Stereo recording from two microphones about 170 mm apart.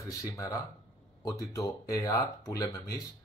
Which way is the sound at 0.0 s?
20° left (ahead or behind).